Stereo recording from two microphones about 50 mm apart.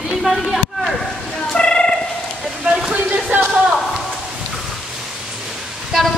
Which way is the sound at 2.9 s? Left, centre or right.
Right.